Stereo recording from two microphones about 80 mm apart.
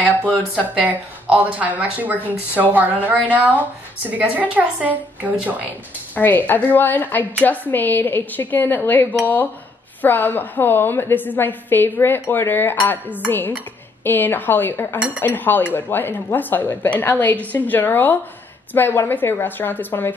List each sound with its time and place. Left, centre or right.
0.0 s speech: centre
6.1 s speech: left
14.0 s speech: left